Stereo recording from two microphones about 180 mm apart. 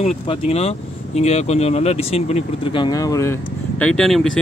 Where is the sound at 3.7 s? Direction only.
5° left (ahead or behind).